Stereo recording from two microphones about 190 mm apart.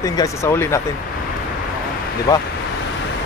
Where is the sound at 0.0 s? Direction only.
20° left (ahead or behind).